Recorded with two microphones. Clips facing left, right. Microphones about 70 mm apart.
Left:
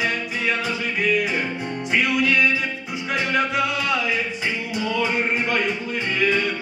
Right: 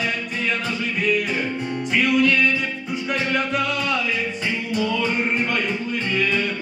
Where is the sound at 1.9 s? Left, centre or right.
Centre.